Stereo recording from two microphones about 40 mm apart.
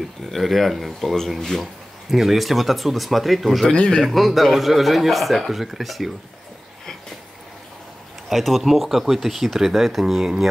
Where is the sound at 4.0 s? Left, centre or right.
Centre.